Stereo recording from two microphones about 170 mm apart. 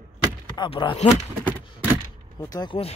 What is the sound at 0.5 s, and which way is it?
Speech, 30° left (ahead or behind).